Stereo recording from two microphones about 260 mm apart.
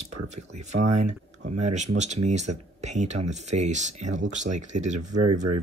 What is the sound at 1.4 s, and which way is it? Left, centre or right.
Speech, right.